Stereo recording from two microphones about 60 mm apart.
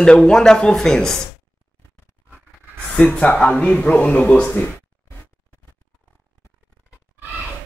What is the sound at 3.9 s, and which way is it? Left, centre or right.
Speech, left.